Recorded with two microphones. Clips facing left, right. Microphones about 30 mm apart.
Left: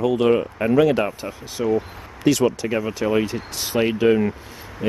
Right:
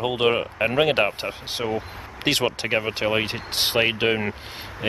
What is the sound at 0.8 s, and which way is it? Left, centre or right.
Speech, right.